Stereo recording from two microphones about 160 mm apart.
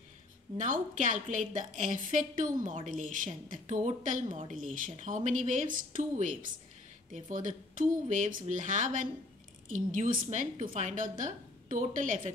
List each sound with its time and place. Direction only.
0.6 s a woman's voice: 50° right (ahead or behind)